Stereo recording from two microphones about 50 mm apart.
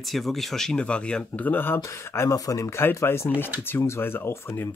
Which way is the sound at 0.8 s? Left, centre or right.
Left.